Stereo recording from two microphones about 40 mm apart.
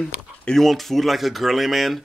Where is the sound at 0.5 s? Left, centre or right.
Centre.